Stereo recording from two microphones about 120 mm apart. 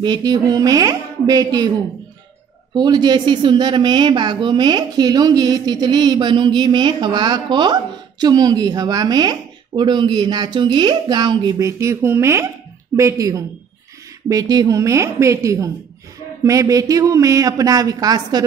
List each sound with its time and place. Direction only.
0.0 s a woman's voice: 35° right (ahead or behind)
2.7 s a woman's voice: 35° right (ahead or behind)
11.6 s speech: 25° right (ahead or behind)